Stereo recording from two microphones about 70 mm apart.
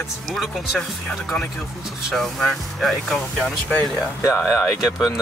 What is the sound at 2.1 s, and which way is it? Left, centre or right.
Speech, centre.